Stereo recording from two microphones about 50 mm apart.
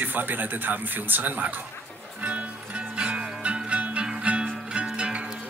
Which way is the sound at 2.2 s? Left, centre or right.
Right.